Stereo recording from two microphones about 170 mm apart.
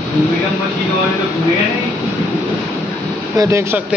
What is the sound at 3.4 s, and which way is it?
Speech, 20° right (ahead or behind).